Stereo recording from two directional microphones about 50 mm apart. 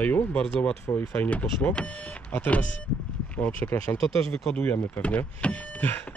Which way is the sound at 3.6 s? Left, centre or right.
Left.